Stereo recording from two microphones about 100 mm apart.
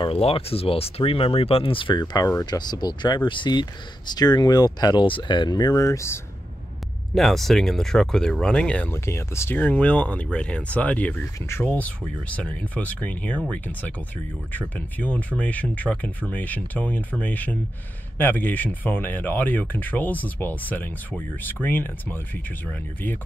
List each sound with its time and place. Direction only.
0.0 s speech: 70° left (ahead or behind)
2.1 s speech: 35° left (ahead or behind)
7.2 s speech: centre (ahead or behind)
15.0 s speech: 15° left (ahead or behind)